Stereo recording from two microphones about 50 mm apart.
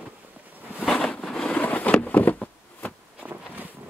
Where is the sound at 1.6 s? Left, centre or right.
Left.